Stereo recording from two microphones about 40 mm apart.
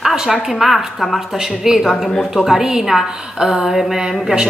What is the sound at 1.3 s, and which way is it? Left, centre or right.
A woman's voice, centre.